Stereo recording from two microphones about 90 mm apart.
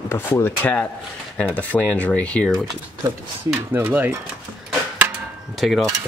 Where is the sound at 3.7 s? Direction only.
20° right (ahead or behind).